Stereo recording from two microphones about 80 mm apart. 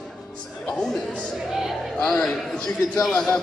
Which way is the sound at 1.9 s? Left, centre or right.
Centre.